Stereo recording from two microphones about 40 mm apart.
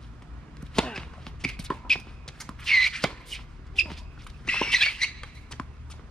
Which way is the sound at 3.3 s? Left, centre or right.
Centre.